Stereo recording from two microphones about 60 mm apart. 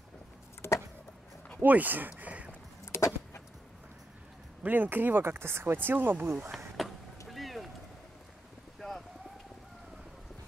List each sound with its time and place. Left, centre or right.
0.6 s vehicle: left
1.6 s a sound: right
2.8 s vehicle: left
4.6 s speech: right
6.8 s vehicle: centre